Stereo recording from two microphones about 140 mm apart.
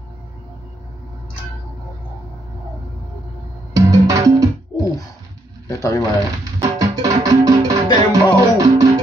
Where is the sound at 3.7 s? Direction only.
25° right (ahead or behind).